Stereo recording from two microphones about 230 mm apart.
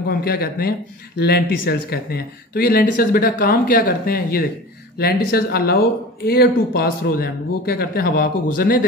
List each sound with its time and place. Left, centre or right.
0.2 s speech: left